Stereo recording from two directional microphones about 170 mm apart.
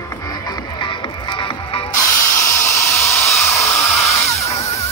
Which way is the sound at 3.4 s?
15° left (ahead or behind).